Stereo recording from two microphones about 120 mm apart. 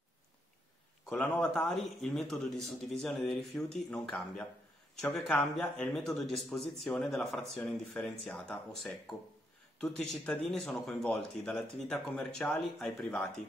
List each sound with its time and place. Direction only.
1.0 s speech: 5° left (ahead or behind)